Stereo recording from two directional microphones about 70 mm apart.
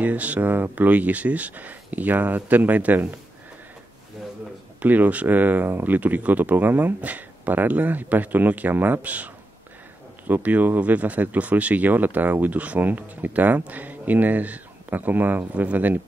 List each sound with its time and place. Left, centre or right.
0.0 s speech: right
4.8 s speech: right